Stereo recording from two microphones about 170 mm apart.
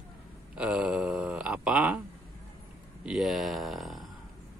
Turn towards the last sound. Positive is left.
turn(degrees=0)  # may be behind; listen again after turning